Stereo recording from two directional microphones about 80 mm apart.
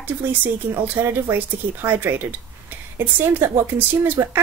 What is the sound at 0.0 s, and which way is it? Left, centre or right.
Speech, right.